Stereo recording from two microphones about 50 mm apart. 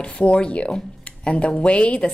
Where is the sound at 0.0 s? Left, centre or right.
Left.